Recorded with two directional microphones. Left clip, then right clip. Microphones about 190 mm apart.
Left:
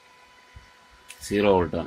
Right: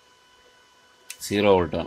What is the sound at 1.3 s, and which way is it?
Speech, 15° right (ahead or behind).